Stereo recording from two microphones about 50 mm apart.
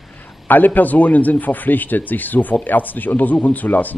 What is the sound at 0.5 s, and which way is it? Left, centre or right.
A man's voice, left.